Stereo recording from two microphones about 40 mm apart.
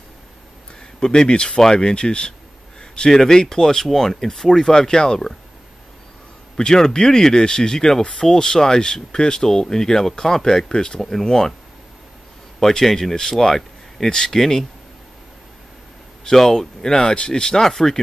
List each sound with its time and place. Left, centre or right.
0.9 s speech: centre
2.8 s a sound: centre
3.2 s speech: centre
6.5 s speech: centre
12.5 s speech: centre
16.3 s speech: centre